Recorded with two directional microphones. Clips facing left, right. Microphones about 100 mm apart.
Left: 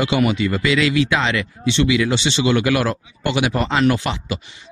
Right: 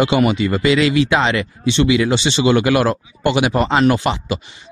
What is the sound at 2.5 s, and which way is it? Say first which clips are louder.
Speech: right 4 dB; 30° right (ahead or behind).